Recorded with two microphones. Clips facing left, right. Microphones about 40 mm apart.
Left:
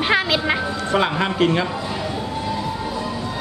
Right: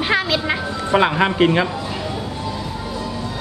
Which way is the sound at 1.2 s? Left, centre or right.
Right.